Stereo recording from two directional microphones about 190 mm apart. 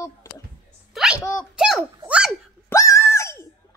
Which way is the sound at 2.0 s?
5° right (ahead or behind).